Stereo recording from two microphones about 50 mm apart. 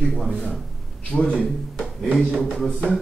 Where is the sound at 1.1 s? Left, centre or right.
Left.